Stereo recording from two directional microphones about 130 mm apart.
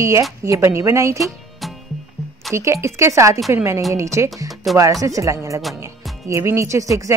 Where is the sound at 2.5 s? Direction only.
20° right (ahead or behind).